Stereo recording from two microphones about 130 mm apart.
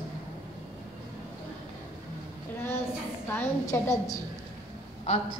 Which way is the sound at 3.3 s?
20° left (ahead or behind).